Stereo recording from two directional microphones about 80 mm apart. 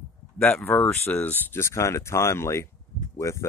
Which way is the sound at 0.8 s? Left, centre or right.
Left.